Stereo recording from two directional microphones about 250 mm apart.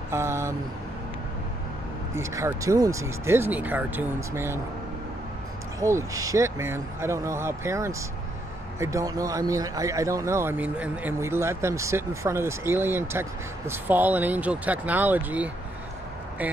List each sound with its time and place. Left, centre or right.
0.1 s speech: centre
2.1 s speech: centre
5.8 s speech: centre